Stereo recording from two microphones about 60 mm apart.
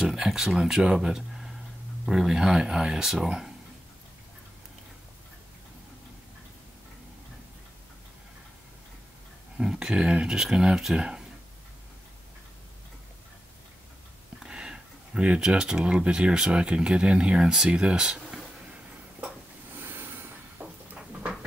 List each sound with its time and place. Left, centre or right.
0.0 s speech: centre
9.6 s speech: centre
14.4 s speech: centre
18.3 s a sound: centre
19.8 s train: right
20.6 s a sound: right